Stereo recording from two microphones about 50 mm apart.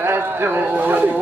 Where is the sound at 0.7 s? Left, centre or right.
Right.